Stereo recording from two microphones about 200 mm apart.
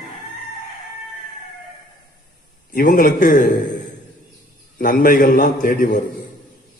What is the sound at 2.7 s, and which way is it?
Speech, 45° left (ahead or behind).